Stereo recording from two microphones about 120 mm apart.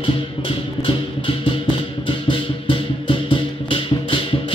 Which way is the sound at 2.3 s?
45° left (ahead or behind).